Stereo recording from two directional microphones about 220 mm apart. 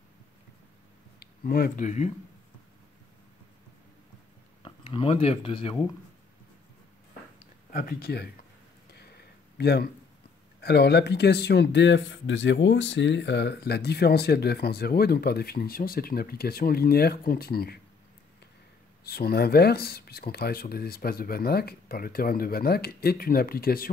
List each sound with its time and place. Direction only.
1.2 s speech: 40° left (ahead or behind)
4.6 s speech: 25° left (ahead or behind)
7.7 s speech: 45° left (ahead or behind)
8.9 s a sound: 45° left (ahead or behind)
10.6 s speech: 50° left (ahead or behind)
19.0 s speech: 45° left (ahead or behind)